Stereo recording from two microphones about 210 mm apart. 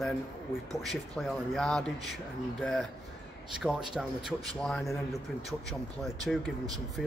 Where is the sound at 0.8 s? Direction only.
Centre (ahead or behind).